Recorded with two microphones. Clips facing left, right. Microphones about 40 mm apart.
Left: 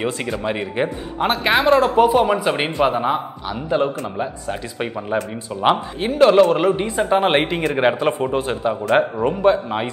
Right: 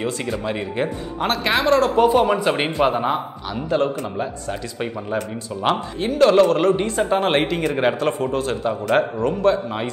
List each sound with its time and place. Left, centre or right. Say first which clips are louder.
0.0 s a man's voice: left 1 dB; centre
1.9 s a man's voice: left 1 dB; centre